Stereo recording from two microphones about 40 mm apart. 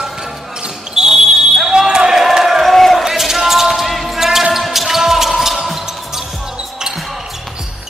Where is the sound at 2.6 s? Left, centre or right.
Centre.